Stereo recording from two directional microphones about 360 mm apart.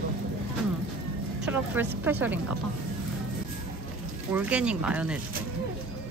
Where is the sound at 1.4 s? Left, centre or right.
Centre.